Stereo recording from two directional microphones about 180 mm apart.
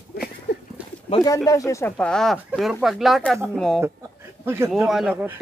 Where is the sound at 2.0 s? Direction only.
5° left (ahead or behind).